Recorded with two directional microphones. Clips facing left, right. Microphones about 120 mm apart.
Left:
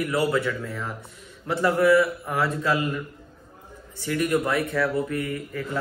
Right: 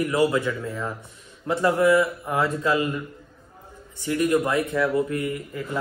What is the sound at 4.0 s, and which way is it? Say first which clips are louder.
Speech: right 2 dB; 20° right (ahead or behind).